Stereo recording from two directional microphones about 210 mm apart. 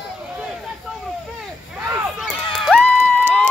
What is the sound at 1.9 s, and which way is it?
Run, 5° right (ahead or behind).